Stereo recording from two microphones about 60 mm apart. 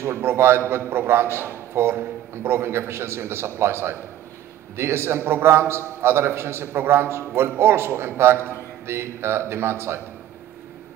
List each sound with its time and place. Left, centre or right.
0.0 s a man's voice: right